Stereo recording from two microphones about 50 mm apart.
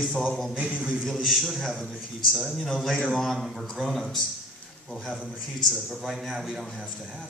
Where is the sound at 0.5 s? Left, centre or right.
Right.